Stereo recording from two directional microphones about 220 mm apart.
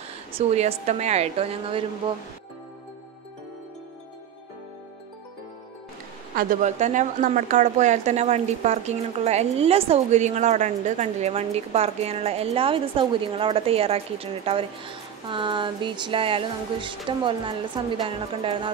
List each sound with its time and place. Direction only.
0.3 s a woman's voice: 30° right (ahead or behind)
6.3 s a woman's voice: 35° right (ahead or behind)